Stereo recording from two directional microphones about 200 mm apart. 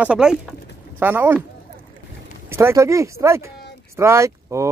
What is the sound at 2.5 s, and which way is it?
Speech, 15° right (ahead or behind).